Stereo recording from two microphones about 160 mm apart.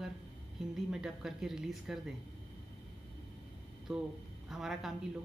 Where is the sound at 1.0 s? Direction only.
5° right (ahead or behind).